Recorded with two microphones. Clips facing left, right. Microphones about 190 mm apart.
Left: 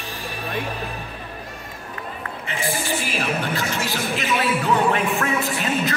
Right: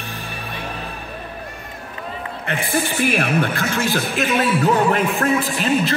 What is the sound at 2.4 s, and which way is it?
A man's voice, 60° right (ahead or behind).